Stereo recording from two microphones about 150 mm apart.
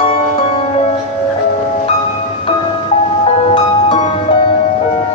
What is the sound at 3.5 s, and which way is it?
Music, 35° left (ahead or behind).